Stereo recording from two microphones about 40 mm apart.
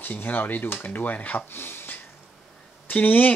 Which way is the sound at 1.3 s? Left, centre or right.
Left.